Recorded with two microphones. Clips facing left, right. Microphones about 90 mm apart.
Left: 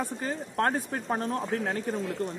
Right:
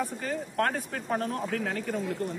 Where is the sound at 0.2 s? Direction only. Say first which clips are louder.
Left 2 dB; 30° left (ahead or behind).